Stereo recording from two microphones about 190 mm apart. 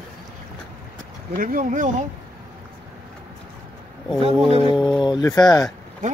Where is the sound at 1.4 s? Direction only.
45° right (ahead or behind).